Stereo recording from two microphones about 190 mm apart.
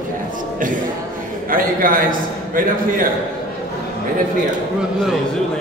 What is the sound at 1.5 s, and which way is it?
A man's voice, 45° right (ahead or behind).